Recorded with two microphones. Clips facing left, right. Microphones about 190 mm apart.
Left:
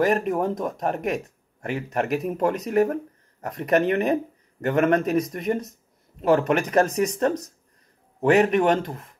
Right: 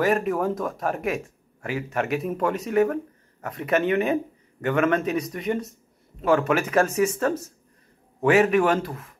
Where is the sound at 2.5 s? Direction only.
Centre (ahead or behind).